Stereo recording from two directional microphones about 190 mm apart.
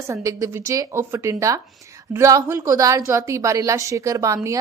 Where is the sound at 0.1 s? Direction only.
15° right (ahead or behind).